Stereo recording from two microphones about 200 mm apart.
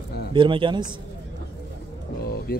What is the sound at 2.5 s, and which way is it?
Speech, 50° left (ahead or behind).